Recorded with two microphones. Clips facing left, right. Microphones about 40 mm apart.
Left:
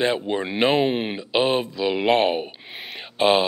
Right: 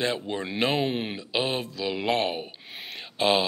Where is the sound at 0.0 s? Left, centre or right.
Left.